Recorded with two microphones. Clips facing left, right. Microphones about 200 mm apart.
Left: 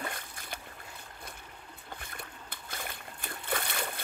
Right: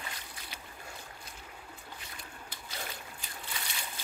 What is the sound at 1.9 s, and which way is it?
Splash, 55° left (ahead or behind).